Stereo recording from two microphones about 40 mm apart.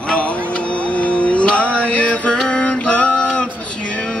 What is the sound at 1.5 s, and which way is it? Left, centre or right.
Music, left.